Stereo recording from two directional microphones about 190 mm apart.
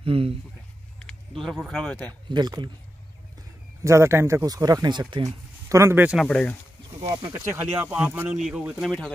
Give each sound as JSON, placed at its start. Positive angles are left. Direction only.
{"t": 0.0, "sound": "speech", "side_deg": -30}
{"t": 1.4, "sound": "speech", "side_deg": 0}
{"t": 2.2, "sound": "speech", "side_deg": -20}
{"t": 3.8, "sound": "speech", "side_deg": -15}
{"t": 6.2, "sound": "speech", "side_deg": 5}
{"t": 7.0, "sound": "speech", "side_deg": -25}
{"t": 7.2, "sound": "speech", "side_deg": -10}